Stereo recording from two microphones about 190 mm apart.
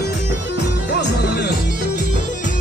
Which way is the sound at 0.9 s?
60° left (ahead or behind).